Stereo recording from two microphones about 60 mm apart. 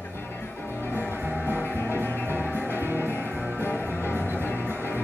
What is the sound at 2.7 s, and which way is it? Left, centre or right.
Music, right.